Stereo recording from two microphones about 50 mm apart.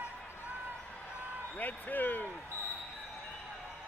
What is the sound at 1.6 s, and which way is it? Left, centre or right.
Speech, left.